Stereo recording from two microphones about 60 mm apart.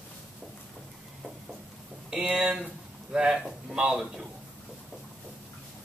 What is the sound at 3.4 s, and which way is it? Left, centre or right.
Speech, centre.